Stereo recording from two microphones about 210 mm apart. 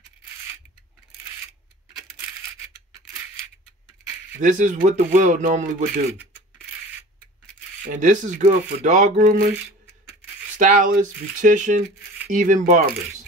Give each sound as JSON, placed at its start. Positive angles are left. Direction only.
{"t": 4.4, "sound": "speech", "side_deg": -35}
{"t": 7.9, "sound": "speech", "side_deg": -35}
{"t": 10.6, "sound": "speech", "side_deg": -40}